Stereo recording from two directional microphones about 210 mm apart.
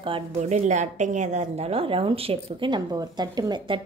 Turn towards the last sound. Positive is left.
turn(degrees=-20)  # may be behind; listen again after turning